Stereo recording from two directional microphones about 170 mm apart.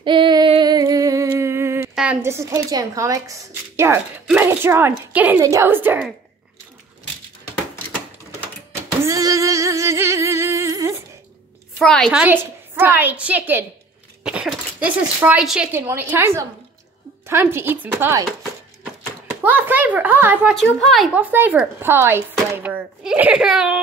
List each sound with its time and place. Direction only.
0.0 s female singing: 30° right (ahead or behind)
2.0 s a woman's voice: 10° right (ahead or behind)
9.0 s music: 20° right (ahead or behind)
11.8 s a woman's voice: 5° left (ahead or behind)
12.2 s a woman's voice: 10° right (ahead or behind)
19.4 s a woman's voice: 10° right (ahead or behind)
20.5 s a woman's voice: centre (ahead or behind)